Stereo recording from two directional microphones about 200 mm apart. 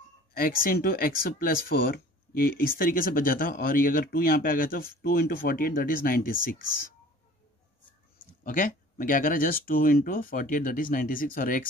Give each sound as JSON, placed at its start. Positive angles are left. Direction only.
{"t": 0.3, "sound": "speech", "side_deg": 45}
{"t": 8.5, "sound": "speech", "side_deg": 45}